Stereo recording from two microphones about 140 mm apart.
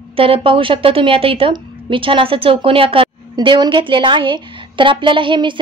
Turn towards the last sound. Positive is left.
turn(degrees=-35)  # may be behind; listen again after turning